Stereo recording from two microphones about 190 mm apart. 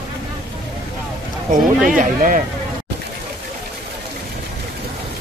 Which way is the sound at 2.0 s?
45° right (ahead or behind).